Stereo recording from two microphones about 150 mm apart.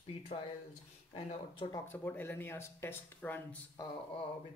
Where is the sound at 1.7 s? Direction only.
15° left (ahead or behind).